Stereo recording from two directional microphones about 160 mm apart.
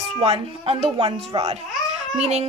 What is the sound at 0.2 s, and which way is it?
Speech, 40° right (ahead or behind).